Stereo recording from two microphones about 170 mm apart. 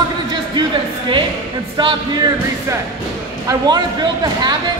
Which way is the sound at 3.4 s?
25° right (ahead or behind).